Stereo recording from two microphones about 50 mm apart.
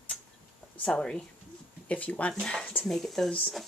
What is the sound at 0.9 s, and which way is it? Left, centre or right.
Speech, centre.